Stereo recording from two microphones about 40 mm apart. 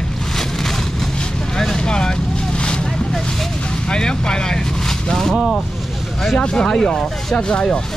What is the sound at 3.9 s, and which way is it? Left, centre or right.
Vehicle, centre.